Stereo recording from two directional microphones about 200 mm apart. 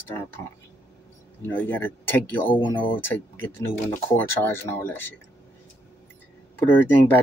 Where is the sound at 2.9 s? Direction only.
10° left (ahead or behind).